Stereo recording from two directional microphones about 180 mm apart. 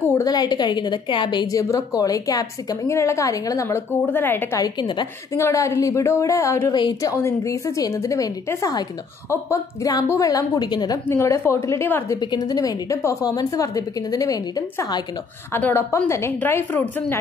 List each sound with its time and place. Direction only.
0.0 s a woman's voice: 15° left (ahead or behind)